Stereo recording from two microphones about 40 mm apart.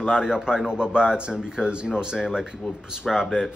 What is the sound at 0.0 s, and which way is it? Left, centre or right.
A man's voice, centre.